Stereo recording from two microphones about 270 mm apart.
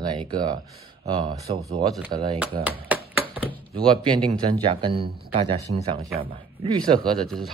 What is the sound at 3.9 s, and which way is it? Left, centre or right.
Speech, centre.